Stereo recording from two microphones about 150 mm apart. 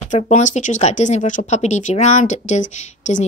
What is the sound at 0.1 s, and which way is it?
Speech, 55° left (ahead or behind).